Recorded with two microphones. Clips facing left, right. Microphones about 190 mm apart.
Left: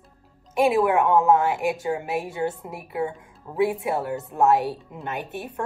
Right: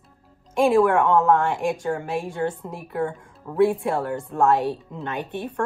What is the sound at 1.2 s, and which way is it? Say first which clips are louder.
A woman's voice: even; 5° left (ahead or behind).